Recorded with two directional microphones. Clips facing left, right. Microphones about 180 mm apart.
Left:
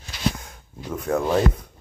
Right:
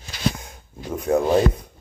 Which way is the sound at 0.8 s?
15° right (ahead or behind).